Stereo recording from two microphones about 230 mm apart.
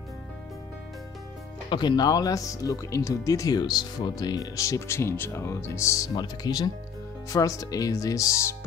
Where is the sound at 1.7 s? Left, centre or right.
Centre.